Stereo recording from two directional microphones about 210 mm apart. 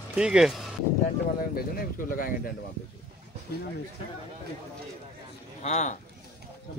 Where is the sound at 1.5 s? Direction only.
40° left (ahead or behind).